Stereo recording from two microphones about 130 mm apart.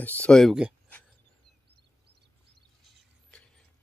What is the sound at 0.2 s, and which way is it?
Speech, 5° left (ahead or behind).